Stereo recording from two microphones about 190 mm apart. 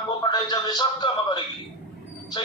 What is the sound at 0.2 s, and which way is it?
A man's voice, 20° left (ahead or behind).